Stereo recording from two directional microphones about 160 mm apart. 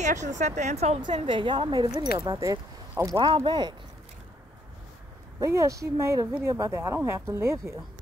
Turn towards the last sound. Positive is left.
turn(degrees=-15)  # may be behind; listen again after turning